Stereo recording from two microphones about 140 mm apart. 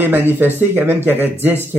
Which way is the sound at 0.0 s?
15° right (ahead or behind).